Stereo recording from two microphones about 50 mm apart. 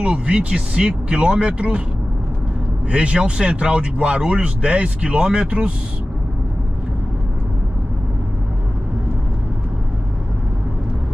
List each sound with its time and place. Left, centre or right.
0.0 s speech: right
2.9 s speech: right